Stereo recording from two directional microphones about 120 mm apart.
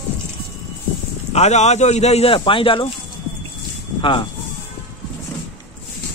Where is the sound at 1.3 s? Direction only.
70° left (ahead or behind); by 2.9 s 45° left (ahead or behind).